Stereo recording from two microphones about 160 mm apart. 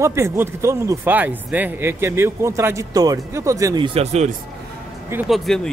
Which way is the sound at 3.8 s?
40° right (ahead or behind).